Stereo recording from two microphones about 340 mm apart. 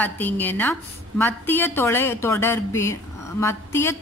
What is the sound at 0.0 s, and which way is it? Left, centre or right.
A woman's voice, centre.